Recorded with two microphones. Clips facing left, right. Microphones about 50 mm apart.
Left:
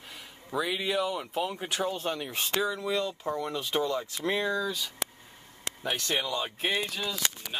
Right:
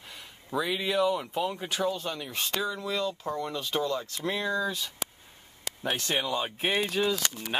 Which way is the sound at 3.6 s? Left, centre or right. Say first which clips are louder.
Left 1 dB; centre.